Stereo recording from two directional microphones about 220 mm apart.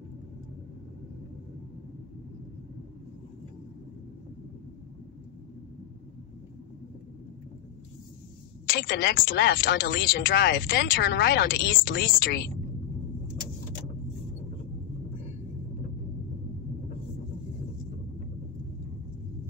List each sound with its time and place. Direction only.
8.6 s speech: 45° left (ahead or behind)